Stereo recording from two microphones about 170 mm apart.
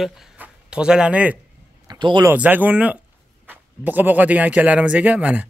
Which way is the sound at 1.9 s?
25° right (ahead or behind).